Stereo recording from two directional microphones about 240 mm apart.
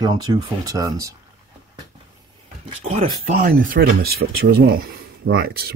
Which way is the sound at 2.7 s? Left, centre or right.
Right.